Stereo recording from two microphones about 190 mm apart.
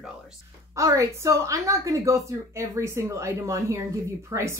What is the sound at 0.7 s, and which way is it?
A woman's voice, 15° right (ahead or behind).